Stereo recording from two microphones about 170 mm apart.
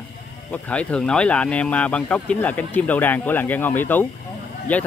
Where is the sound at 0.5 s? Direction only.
5° left (ahead or behind).